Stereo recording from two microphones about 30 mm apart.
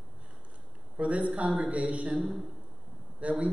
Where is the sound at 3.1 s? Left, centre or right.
Right.